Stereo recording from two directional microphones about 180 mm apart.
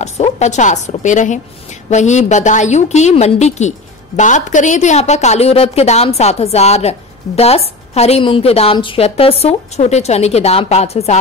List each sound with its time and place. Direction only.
0.0 s a woman's voice: 40° left (ahead or behind)